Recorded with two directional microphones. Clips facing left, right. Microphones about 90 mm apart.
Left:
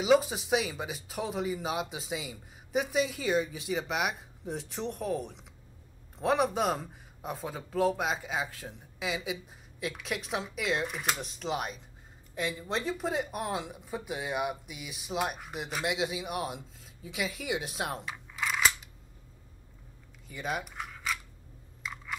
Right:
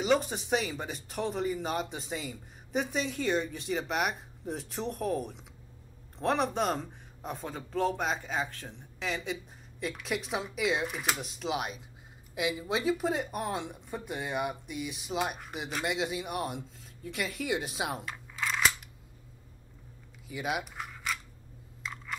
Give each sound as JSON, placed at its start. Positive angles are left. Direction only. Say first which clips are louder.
{"t": 0.0, "sound": "speech", "louder": "left 3 dB", "side_deg": 5}
{"t": 20.2, "sound": "speech", "louder": "right 1 dB", "side_deg": -5}
{"t": 21.8, "sound": "camera", "louder": "even", "side_deg": 0}